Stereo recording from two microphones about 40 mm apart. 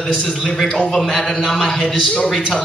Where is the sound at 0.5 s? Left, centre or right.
Centre.